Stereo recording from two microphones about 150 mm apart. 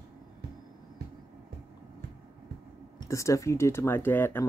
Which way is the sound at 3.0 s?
20° left (ahead or behind).